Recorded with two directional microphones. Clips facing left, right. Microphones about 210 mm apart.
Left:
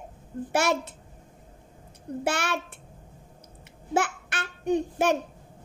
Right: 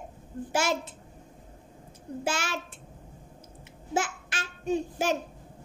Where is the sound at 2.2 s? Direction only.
60° left (ahead or behind).